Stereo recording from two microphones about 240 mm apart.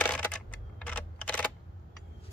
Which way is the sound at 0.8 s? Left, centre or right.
Centre.